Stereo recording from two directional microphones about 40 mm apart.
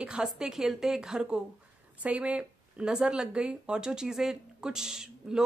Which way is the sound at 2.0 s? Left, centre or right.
Right.